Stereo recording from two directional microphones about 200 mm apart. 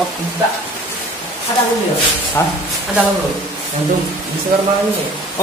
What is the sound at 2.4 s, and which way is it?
Speech, 15° left (ahead or behind).